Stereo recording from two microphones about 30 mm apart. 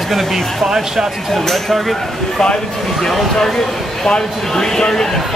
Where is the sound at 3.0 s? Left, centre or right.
Centre.